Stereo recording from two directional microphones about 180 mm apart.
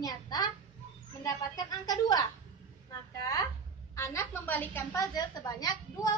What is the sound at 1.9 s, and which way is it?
Speech, 20° left (ahead or behind).